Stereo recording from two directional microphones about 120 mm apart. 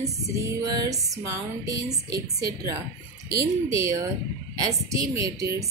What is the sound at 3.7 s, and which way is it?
A woman's voice, 25° right (ahead or behind).